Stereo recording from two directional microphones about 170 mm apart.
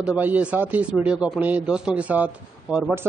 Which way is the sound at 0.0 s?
10° right (ahead or behind).